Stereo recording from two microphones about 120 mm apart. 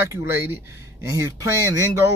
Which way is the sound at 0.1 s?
20° right (ahead or behind).